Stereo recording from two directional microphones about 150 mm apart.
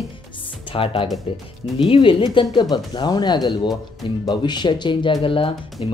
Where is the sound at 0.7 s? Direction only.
35° left (ahead or behind).